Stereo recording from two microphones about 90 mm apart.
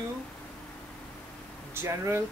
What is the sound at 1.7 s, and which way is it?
Speech, 30° right (ahead or behind).